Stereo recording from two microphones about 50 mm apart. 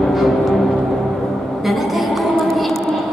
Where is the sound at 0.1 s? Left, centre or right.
Centre.